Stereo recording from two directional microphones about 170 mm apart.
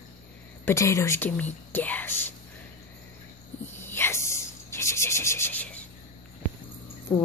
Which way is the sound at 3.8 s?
15° left (ahead or behind).